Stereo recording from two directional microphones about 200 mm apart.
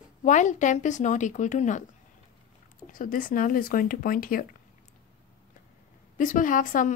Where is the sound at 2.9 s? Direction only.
40° left (ahead or behind).